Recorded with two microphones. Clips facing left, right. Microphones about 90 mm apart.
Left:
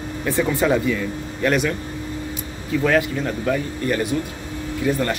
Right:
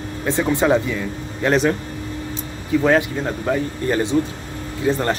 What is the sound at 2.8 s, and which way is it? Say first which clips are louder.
Speech: right 1 dB; 20° right (ahead or behind).